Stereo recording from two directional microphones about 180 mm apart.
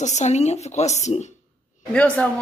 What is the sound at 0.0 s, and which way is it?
Speech, 40° left (ahead or behind).